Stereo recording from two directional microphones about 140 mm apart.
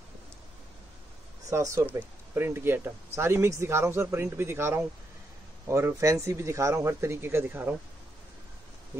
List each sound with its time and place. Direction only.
1.5 s speech: 20° right (ahead or behind)